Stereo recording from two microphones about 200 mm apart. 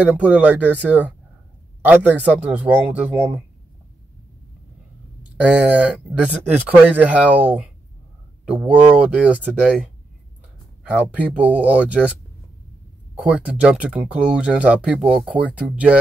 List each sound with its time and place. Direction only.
0.0 s speech: 5° right (ahead or behind)
5.4 s speech: 5° right (ahead or behind)
13.2 s speech: 5° right (ahead or behind)